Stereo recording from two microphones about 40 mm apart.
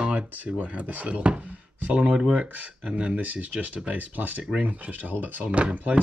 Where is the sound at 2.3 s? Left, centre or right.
Right.